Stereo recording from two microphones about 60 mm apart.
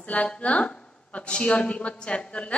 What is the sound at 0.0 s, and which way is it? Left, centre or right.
Speech, centre.